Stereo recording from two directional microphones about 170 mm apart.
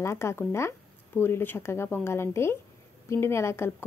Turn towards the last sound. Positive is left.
turn(degrees=15)  # may be behind; listen again after turning